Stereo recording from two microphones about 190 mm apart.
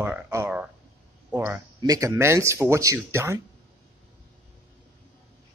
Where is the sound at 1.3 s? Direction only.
15° right (ahead or behind).